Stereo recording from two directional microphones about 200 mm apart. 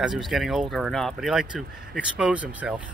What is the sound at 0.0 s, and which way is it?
Speech, centre (ahead or behind).